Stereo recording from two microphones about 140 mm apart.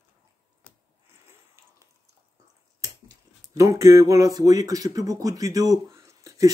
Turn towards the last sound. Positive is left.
turn(degrees=-25)  # may be behind; listen again after turning